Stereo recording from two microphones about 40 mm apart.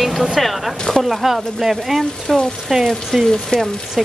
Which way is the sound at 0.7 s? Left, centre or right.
Centre.